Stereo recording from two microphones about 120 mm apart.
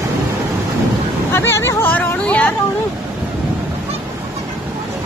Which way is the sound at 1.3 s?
20° left (ahead or behind).